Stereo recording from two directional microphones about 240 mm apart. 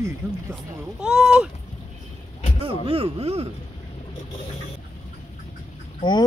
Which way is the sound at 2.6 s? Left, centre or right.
Right.